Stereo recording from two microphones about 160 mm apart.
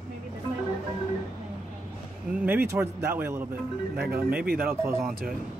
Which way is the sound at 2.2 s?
10° right (ahead or behind).